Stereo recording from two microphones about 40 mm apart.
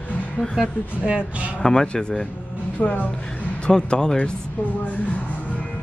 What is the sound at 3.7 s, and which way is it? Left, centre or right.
Speech, centre.